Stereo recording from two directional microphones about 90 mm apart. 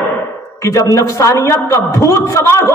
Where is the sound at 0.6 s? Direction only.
35° left (ahead or behind).